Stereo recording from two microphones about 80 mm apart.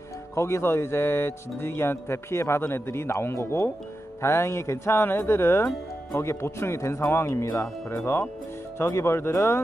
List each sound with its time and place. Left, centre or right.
0.4 s speech: left